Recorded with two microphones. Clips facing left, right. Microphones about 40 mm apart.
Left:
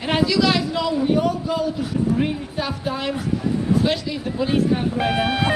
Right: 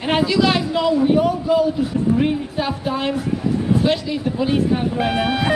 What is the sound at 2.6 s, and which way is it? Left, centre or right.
A woman's voice, right.